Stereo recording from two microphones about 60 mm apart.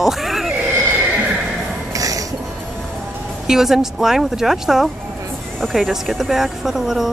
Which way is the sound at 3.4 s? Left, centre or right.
Centre.